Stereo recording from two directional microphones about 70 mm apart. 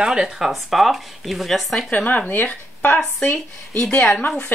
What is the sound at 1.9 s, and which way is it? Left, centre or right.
Speech, left.